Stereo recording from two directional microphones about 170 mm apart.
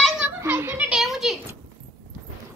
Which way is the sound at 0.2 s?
15° right (ahead or behind).